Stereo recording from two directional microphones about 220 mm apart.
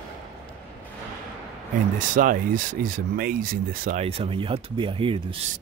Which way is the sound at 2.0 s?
35° right (ahead or behind).